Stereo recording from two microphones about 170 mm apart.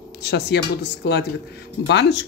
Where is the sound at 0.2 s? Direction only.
75° left (ahead or behind).